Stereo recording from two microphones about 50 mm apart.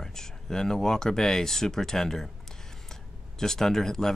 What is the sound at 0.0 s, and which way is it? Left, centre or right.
Speech, centre.